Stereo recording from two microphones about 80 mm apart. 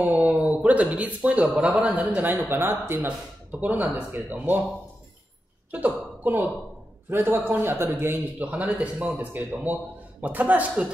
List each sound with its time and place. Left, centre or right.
0.0 s a man's voice: centre
5.7 s a man's voice: right
8.5 s a man's voice: centre